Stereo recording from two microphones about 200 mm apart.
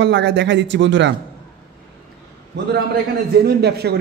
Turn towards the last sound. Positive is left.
turn(degrees=-55)  # may be behind; listen again after turning